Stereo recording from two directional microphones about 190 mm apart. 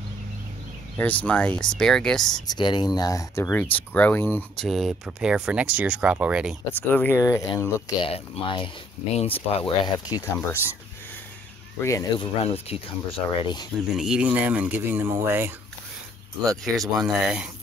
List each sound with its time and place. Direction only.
0.9 s speech: 10° left (ahead or behind)
2.4 s speech: 25° left (ahead or behind); by 6.5 s 5° right (ahead or behind)
6.7 s speech: 10° left (ahead or behind)
8.0 s speech: 25° left (ahead or behind)
11.8 s speech: 15° left (ahead or behind)
12.4 s speech: 30° left (ahead or behind)
13.9 s speech: 5° right (ahead or behind)
16.4 s speech: centre (ahead or behind)